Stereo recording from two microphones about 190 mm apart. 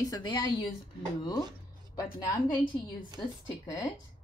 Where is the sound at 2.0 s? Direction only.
20° left (ahead or behind).